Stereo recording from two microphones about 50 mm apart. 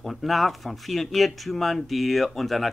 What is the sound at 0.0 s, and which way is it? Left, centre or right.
Speech, centre.